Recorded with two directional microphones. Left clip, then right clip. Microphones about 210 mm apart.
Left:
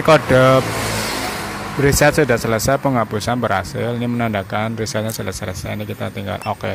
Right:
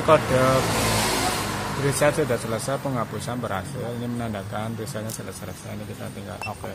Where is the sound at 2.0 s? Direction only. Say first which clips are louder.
Left 6 dB; 30° left (ahead or behind).